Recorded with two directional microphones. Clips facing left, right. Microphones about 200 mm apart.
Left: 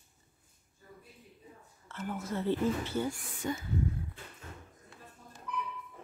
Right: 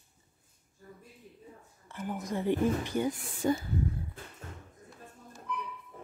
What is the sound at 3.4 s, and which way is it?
Speech, 30° right (ahead or behind).